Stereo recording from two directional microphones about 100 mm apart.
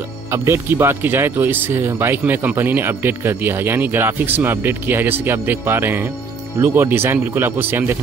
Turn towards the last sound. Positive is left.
turn(degrees=-20)  # may be behind; listen again after turning